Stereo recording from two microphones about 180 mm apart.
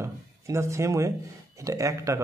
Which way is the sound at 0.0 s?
15° right (ahead or behind).